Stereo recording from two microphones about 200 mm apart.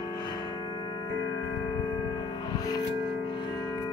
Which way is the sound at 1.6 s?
20° left (ahead or behind).